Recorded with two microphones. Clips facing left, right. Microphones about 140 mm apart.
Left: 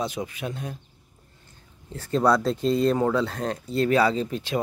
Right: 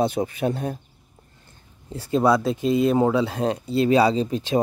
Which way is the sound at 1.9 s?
10° right (ahead or behind).